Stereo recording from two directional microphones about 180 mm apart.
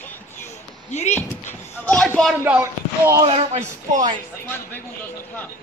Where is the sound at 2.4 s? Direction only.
15° right (ahead or behind).